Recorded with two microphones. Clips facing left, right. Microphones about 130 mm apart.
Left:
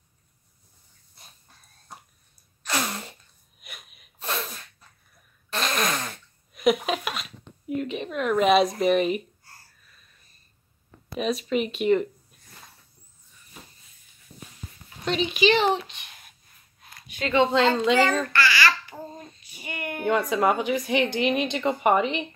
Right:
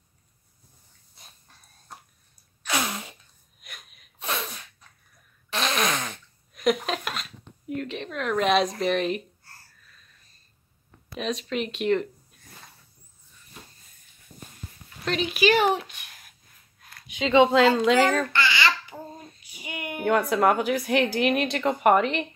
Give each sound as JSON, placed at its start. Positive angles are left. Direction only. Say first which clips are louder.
{"t": 2.6, "sound": "a sound", "louder": "even", "side_deg": 0}
{"t": 3.6, "sound": "sneeze", "louder": "left 1 dB", "side_deg": 5}
{"t": 5.5, "sound": "fart", "louder": "right 1 dB", "side_deg": 0}
{"t": 11.1, "sound": "speech", "louder": "left 3 dB", "side_deg": 5}
{"t": 15.0, "sound": "speech", "louder": "left 1 dB", "side_deg": 0}
{"t": 17.5, "sound": "speech", "louder": "right 2 dB", "side_deg": -5}
{"t": 18.3, "sound": "babbling", "louder": "left 1 dB", "side_deg": -20}
{"t": 19.0, "sound": "a sound", "louder": "left 1 dB", "side_deg": -10}
{"t": 20.1, "sound": "speech", "louder": "right 1 dB", "side_deg": 0}